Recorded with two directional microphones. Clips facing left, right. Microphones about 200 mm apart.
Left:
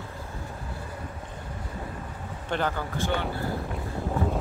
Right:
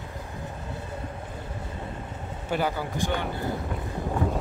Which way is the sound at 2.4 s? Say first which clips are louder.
Right 1 dB; 10° right (ahead or behind).